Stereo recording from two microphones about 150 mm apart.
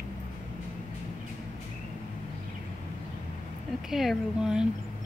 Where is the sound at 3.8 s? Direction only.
Centre (ahead or behind).